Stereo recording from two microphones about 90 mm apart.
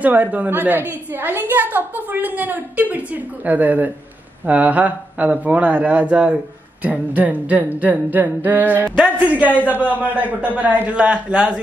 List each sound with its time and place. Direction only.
0.0 s a woman's voice: 15° right (ahead or behind)